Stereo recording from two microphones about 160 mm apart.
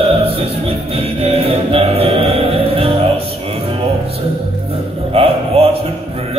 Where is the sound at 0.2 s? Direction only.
35° right (ahead or behind).